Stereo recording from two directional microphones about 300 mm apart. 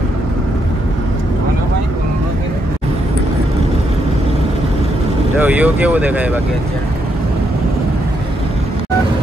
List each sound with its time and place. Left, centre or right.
5.4 s speech: centre